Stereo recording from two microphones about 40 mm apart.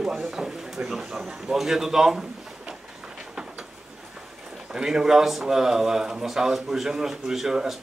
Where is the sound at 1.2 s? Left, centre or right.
Centre.